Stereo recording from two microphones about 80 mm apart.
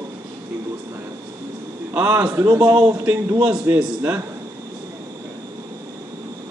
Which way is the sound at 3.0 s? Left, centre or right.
Right.